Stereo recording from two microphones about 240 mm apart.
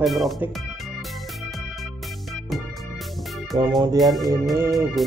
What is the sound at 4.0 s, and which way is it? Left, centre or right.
Music, centre.